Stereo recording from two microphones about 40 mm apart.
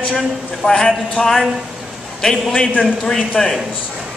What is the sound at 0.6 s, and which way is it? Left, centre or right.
Speech, left.